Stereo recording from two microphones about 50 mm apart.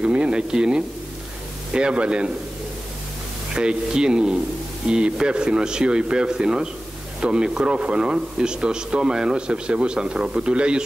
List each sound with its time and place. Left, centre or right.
0.0 s speech: centre
3.5 s a man's voice: centre